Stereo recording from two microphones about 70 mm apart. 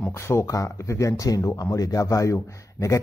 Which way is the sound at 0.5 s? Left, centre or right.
Left.